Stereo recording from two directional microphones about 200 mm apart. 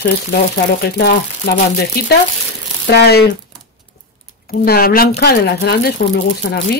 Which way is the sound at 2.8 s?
55° left (ahead or behind).